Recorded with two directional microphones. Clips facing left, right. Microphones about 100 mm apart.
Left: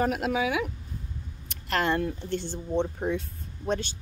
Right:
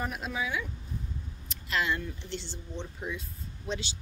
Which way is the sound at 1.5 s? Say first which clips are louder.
Left 4 dB; 55° left (ahead or behind).